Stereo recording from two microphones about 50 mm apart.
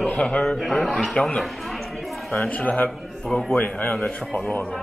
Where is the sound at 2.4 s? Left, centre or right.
Left.